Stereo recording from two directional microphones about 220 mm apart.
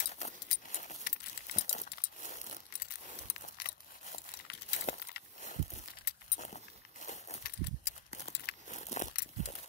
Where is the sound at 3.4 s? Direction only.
40° left (ahead or behind).